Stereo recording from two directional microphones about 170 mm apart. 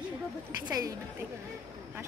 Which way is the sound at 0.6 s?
20° right (ahead or behind).